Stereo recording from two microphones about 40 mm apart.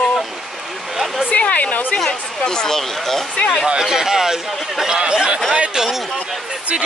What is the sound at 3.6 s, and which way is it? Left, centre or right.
Speech, centre.